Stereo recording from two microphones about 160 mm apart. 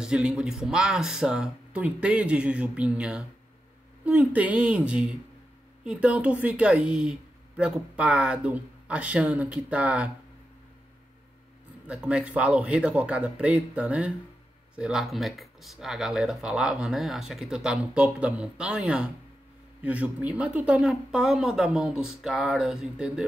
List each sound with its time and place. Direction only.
0.0 s a woman's voice: 5° right (ahead or behind)
11.9 s a woman's voice: 5° right (ahead or behind)